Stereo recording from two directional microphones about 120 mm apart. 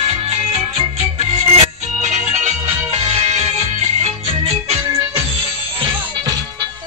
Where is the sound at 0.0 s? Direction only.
50° right (ahead or behind).